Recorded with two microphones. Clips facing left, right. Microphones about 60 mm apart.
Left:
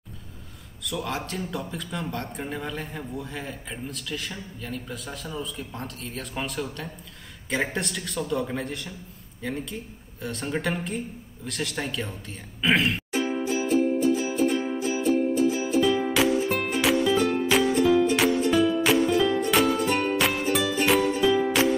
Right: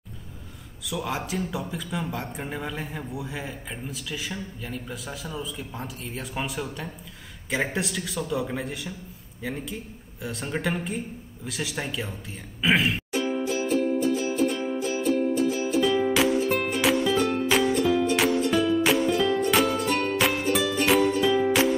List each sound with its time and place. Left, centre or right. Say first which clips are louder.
0.8 s speech: right 1 dB; centre
13.1 s music: even; centre
13.5 s music: left 3 dB; centre